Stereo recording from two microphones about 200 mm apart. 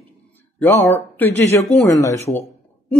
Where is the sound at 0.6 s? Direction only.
10° left (ahead or behind).